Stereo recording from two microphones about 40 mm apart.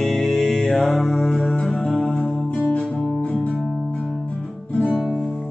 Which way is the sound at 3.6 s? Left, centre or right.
Centre.